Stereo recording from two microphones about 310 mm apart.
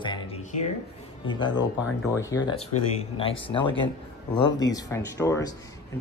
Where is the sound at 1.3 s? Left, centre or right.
Centre.